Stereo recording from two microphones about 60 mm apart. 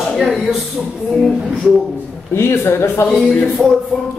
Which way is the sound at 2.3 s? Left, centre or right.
Left.